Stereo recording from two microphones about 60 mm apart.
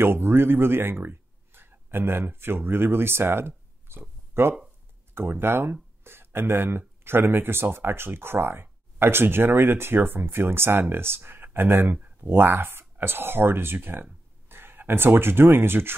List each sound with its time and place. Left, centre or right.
0.0 s speech: right